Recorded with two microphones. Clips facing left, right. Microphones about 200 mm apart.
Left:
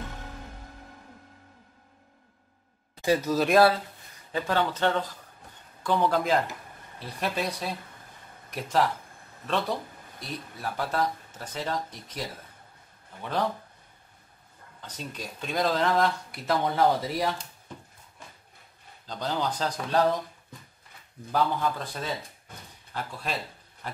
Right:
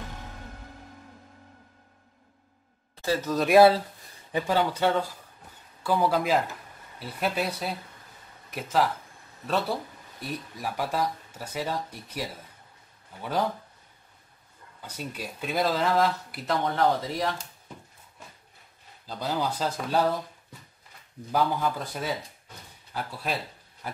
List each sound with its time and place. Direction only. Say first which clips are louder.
3.0 s speech: left 2 dB; 15° left (ahead or behind)
4.3 s speech: right 2 dB; 10° right (ahead or behind)
14.8 s speech: right 2 dB; 10° right (ahead or behind)
19.0 s speech: right 1 dB; 10° right (ahead or behind)
21.3 s speech: right 1 dB; 10° right (ahead or behind)
22.5 s speech: left 3 dB; 50° left (ahead or behind)
22.9 s speech: right 1 dB; 5° right (ahead or behind)